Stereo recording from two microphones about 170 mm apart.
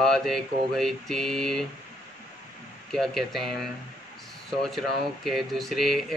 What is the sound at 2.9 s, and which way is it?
Speech, centre (ahead or behind).